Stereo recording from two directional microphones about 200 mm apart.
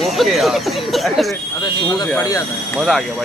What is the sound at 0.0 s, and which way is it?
A man's voice, centre (ahead or behind).